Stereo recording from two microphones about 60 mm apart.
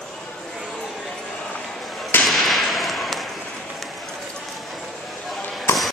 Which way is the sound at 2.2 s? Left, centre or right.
Centre.